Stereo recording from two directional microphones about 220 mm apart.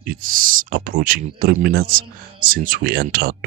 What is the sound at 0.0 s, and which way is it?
Speech, 40° right (ahead or behind).